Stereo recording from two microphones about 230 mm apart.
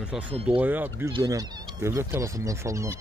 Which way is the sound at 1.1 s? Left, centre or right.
Centre.